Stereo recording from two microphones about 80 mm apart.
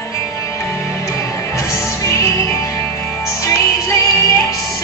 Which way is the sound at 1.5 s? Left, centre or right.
Left.